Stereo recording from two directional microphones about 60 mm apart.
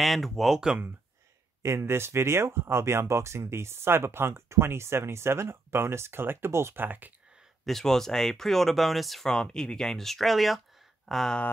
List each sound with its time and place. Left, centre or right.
0.0 s speech: centre
1.6 s speech: right
1.9 s speech: right
6.8 s speech: right
7.6 s speech: centre